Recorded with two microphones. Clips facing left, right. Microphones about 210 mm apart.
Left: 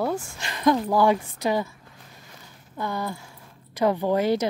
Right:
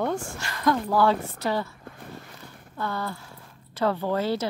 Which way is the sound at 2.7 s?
15° left (ahead or behind).